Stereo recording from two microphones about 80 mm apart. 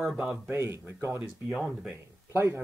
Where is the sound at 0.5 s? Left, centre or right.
Right.